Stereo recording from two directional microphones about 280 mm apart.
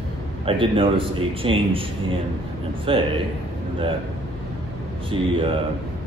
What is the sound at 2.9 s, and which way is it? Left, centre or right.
Speech, centre.